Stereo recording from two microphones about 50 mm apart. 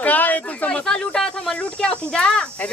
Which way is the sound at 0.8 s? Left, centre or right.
Centre.